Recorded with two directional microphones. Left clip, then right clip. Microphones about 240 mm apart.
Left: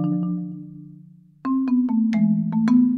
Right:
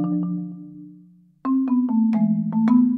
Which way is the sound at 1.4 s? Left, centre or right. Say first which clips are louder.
Even; left.